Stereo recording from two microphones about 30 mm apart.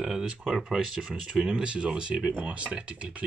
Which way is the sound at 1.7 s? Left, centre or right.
Right.